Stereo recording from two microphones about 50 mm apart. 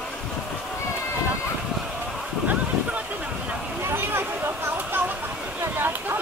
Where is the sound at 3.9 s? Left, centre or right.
Right.